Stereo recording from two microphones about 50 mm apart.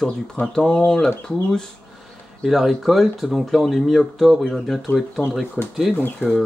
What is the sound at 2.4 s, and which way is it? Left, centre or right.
Speech, centre.